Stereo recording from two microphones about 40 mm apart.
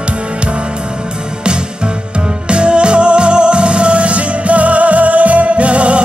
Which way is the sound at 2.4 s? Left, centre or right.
Right.